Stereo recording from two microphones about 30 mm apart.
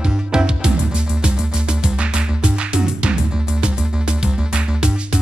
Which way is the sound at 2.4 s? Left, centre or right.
Right.